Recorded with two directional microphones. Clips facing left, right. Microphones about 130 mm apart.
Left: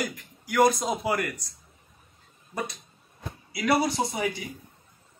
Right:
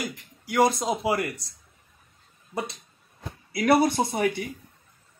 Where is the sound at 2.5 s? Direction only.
25° right (ahead or behind).